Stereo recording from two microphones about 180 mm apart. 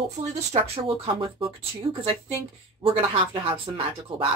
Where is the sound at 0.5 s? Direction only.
30° right (ahead or behind).